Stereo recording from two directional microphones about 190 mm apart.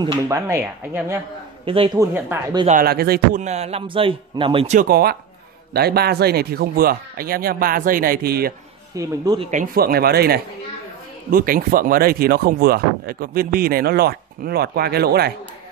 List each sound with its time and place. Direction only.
0.3 s speech: 15° right (ahead or behind)
2.7 s speech: 50° right (ahead or behind)
3.4 s a man's voice: 35° right (ahead or behind)
4.7 s speech: 50° right (ahead or behind)
8.9 s speech: 20° right (ahead or behind)
9.4 s speech: 40° right (ahead or behind); by 15.3 s 55° right (ahead or behind)